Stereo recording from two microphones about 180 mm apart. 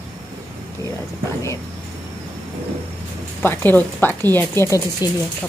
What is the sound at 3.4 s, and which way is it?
A woman's voice, 10° left (ahead or behind).